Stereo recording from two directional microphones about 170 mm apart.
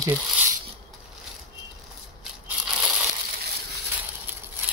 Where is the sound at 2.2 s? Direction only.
5° right (ahead or behind).